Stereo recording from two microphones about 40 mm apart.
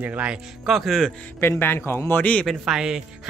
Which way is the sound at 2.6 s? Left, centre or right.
Centre.